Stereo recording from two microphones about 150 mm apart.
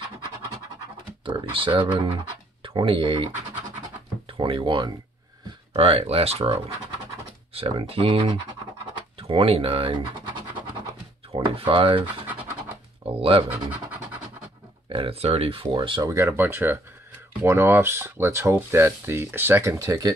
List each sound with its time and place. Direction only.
1.2 s speech: 35° right (ahead or behind)
11.3 s speech: 35° right (ahead or behind)
13.2 s speech: 35° right (ahead or behind)
13.5 s pant: 10° right (ahead or behind)
14.9 s speech: 40° right (ahead or behind)
16.1 s speech: 20° right (ahead or behind)